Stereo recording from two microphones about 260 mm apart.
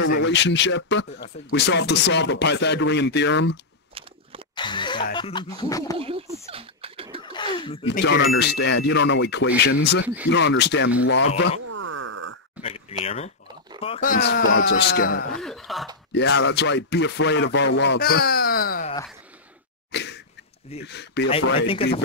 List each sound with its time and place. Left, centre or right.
0.0 s speech: left
4.6 s music: centre
5.1 s speech: centre
5.9 s speech: right
6.5 s a sound: right
7.3 s speech: centre
7.8 s speech: left
11.6 s a sound: right
12.6 s speech: left
15.3 s speech: centre
16.1 s speech: left
19.9 s sneeze: left
20.8 s speech: left
21.5 s speech: left